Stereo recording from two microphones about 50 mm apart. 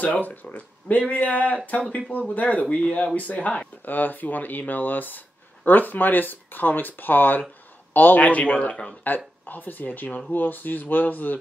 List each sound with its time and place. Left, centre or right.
0.0 s speech: left
9.0 s speech: left